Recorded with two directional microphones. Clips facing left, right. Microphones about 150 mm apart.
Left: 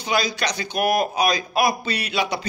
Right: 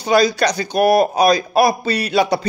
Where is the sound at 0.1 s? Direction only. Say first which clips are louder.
Right 9 dB; 40° right (ahead or behind).